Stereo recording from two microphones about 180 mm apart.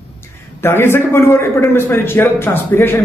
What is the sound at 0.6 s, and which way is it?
A man's voice, 15° left (ahead or behind).